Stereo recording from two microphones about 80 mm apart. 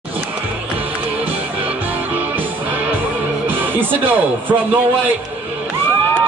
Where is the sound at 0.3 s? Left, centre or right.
Right.